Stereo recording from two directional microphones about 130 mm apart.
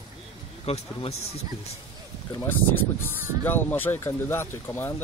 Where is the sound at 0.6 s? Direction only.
50° left (ahead or behind).